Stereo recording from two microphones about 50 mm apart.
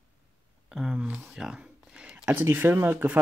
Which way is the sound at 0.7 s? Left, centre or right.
Centre.